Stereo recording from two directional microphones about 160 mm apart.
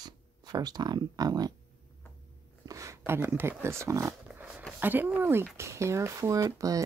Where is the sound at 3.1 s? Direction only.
15° right (ahead or behind).